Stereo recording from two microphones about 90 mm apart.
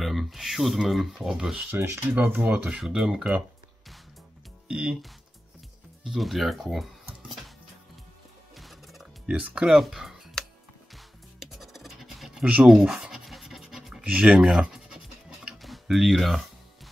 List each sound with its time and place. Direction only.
0.0 s speech: centre (ahead or behind)
1.7 s speech: 25° right (ahead or behind)
2.7 s speech: 5° right (ahead or behind)
4.6 s speech: 10° right (ahead or behind)
6.0 s speech: centre (ahead or behind)
8.5 s music: centre (ahead or behind)
9.3 s speech: 10° right (ahead or behind)
11.0 s scratch: centre (ahead or behind)